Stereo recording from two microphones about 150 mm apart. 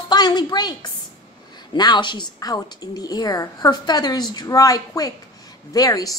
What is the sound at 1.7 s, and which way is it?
A woman's voice, 30° left (ahead or behind).